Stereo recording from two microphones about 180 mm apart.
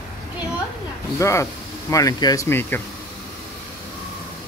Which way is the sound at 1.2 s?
15° left (ahead or behind).